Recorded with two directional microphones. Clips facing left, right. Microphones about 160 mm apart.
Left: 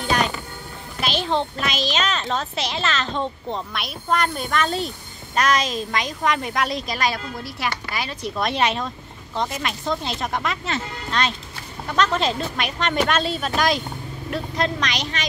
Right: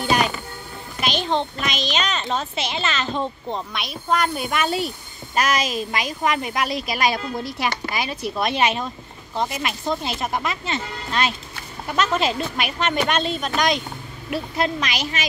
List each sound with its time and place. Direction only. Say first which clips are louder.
1.0 s a child's voice: even; centre (ahead or behind); by 8.3 s 15° right (ahead or behind)
8.4 s a child's voice: even; 5° right (ahead or behind)